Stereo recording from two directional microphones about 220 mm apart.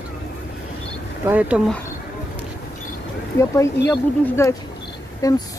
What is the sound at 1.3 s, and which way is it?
Speech, 5° right (ahead or behind).